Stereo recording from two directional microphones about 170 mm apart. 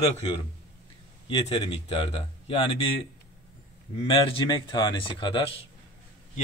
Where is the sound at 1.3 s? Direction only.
30° left (ahead or behind).